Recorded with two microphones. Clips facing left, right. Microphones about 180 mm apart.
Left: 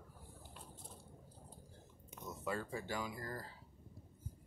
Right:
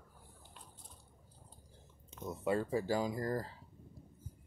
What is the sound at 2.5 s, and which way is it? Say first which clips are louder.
Speech: right 9 dB; 30° right (ahead or behind).